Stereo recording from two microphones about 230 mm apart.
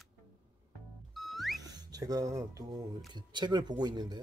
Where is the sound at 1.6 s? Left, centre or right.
Centre.